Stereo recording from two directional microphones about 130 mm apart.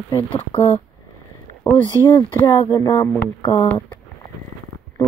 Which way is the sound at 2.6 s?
35° left (ahead or behind).